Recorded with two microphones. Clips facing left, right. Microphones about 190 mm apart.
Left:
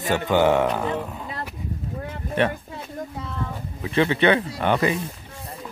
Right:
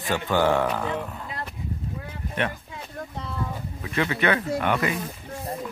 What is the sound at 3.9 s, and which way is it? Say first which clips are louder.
Speech: left 5 dB; 30° left (ahead or behind).